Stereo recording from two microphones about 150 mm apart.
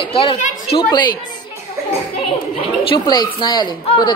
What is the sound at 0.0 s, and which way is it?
A woman's voice, 40° left (ahead or behind).